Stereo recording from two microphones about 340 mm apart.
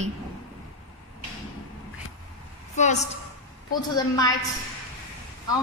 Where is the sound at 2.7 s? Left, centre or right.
Left.